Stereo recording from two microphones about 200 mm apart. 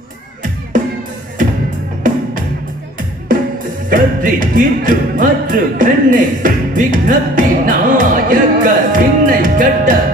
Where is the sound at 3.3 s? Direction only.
45° right (ahead or behind).